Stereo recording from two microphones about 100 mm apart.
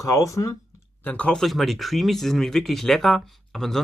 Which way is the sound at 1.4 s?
Centre (ahead or behind).